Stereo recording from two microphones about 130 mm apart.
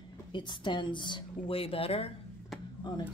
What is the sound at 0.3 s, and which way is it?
Speech, 35° left (ahead or behind).